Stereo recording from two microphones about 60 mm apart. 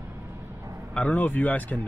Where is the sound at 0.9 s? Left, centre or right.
Left.